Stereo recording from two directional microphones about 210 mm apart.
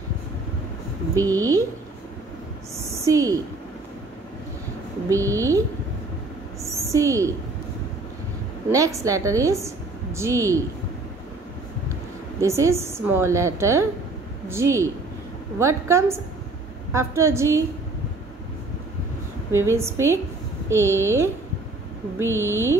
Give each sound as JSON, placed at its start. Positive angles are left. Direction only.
{"t": 1.1, "sound": "a woman's voice", "side_deg": -15}
{"t": 3.1, "sound": "a woman's voice", "side_deg": -15}
{"t": 5.1, "sound": "a woman's voice", "side_deg": -15}
{"t": 6.7, "sound": "a sound", "side_deg": -15}
{"t": 8.6, "sound": "a woman's voice", "side_deg": -15}
{"t": 12.4, "sound": "a woman's voice", "side_deg": -15}
{"t": 19.5, "sound": "a woman's voice", "side_deg": -15}